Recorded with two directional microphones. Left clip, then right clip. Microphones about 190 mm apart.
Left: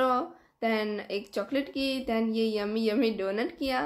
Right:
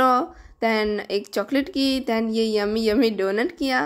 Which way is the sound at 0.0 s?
40° right (ahead or behind).